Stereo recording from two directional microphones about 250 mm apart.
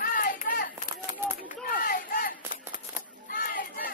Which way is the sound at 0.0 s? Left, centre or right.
Left.